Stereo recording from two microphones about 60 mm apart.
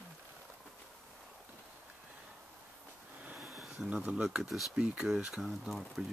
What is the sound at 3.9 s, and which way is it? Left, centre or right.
Speech, right.